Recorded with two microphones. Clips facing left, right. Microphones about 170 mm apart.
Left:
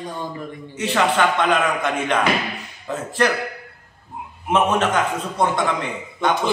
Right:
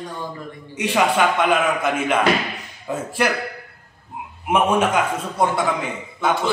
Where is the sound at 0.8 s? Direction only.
15° right (ahead or behind).